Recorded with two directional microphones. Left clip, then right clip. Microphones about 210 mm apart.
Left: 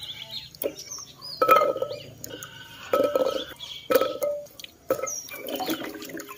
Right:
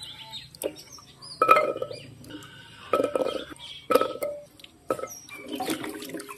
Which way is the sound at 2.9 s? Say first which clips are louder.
Left 3 dB; 5° right (ahead or behind).